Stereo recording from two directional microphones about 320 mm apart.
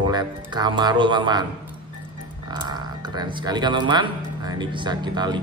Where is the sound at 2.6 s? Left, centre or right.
Centre.